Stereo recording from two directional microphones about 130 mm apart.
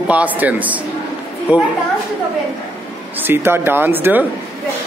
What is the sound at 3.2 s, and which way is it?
Speech, 15° right (ahead or behind).